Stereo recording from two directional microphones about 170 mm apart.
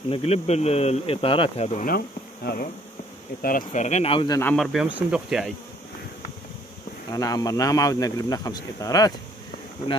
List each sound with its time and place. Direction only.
0.1 s speech: 35° left (ahead or behind)
1.9 s speech: 65° left (ahead or behind)
3.4 s speech: 50° left (ahead or behind); by 4.4 s 30° left (ahead or behind)
4.6 s speech: 5° right (ahead or behind)
7.1 s speech: 20° left (ahead or behind)